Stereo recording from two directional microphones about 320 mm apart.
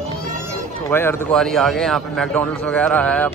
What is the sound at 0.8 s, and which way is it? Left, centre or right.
A man's voice, centre.